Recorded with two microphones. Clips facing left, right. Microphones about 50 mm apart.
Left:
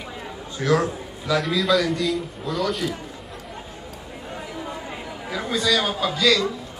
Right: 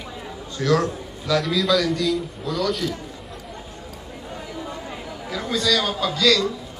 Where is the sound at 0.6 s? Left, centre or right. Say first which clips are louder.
Even; centre.